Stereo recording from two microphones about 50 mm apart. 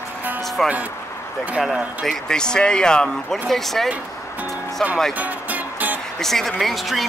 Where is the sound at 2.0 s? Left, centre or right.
Centre.